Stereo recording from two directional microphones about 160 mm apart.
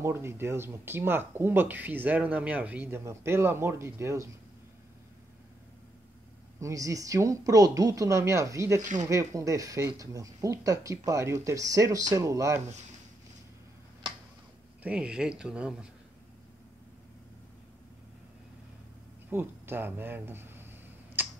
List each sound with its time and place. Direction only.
0.0 s speech: 15° right (ahead or behind)
6.6 s speech: 20° right (ahead or behind)
14.8 s speech: 5° right (ahead or behind)
19.3 s speech: 15° right (ahead or behind)